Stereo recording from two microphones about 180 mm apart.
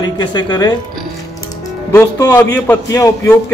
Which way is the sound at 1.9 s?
20° left (ahead or behind).